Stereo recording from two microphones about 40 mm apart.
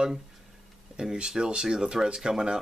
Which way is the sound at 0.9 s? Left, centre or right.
Centre.